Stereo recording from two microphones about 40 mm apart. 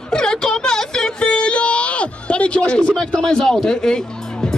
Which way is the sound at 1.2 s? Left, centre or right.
Left.